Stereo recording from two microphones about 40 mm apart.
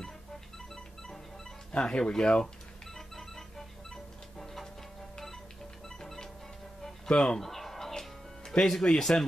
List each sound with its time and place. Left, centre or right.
1.7 s speech: left
2.9 s music: centre
5.9 s music: centre
7.1 s speech: left
7.3 s chicken: centre
8.0 s music: centre